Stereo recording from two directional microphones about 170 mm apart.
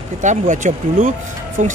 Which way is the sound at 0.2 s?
45° right (ahead or behind).